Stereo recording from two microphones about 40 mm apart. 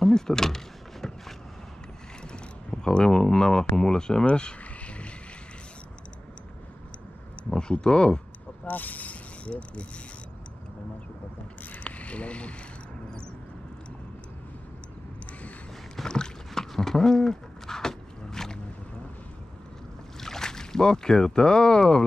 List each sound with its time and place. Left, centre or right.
0.0 s speech: centre
2.2 s a sound: centre
3.7 s speech: centre
4.3 s vehicle: left
7.5 s speech: left
8.6 s speech: left
11.6 s a sound: left
16.1 s boat: centre
16.7 s a sound: centre
20.2 s speech: centre